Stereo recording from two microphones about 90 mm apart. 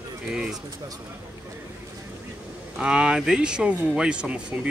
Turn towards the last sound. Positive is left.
turn(degrees=-15)  # may be behind; listen again after turning